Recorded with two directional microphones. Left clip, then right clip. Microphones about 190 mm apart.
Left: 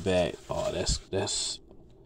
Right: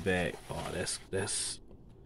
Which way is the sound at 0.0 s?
15° left (ahead or behind).